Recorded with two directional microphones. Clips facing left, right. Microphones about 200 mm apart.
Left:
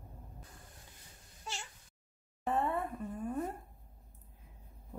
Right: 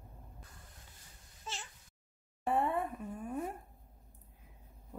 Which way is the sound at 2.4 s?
15° right (ahead or behind).